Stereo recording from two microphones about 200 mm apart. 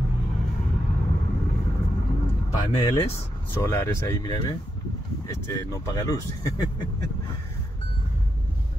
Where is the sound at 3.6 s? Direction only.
15° left (ahead or behind).